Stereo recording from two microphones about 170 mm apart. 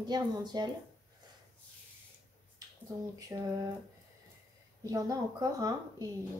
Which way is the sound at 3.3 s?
20° right (ahead or behind).